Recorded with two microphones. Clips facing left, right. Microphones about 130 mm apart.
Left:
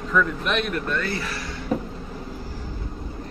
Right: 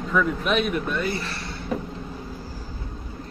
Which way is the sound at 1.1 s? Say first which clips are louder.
Left 1 dB; 30° right (ahead or behind).